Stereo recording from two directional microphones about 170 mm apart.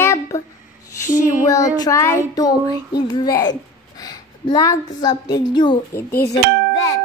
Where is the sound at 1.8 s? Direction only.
20° left (ahead or behind).